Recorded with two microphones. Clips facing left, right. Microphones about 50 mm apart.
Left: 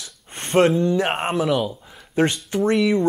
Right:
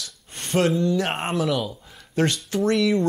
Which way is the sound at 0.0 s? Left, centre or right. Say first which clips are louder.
Left 2 dB; left.